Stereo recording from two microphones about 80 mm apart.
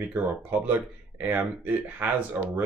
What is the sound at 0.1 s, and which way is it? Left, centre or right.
Speech, right.